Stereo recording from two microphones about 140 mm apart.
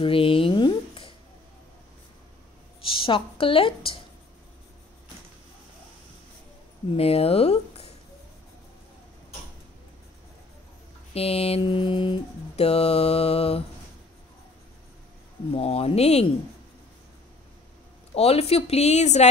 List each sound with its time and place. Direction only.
0.0 s a sound: 40° left (ahead or behind)
2.8 s a woman's voice: 40° left (ahead or behind)
7.0 s speech: 45° left (ahead or behind)
11.1 s mantra: 45° left (ahead or behind)
15.5 s mantra: 45° left (ahead or behind)
18.1 s mantra: 45° left (ahead or behind)